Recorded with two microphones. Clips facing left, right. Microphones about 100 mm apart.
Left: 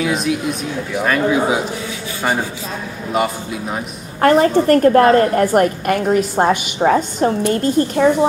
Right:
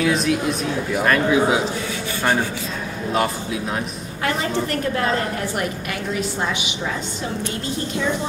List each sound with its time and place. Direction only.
0.0 s speech: centre (ahead or behind)
3.2 s speech: 5° left (ahead or behind)
4.2 s a woman's voice: 45° left (ahead or behind)